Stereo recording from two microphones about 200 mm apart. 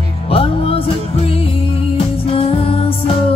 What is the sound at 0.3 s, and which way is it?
Music, 30° left (ahead or behind).